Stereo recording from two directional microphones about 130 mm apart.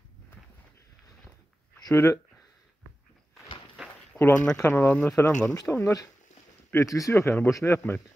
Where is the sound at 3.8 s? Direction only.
5° right (ahead or behind).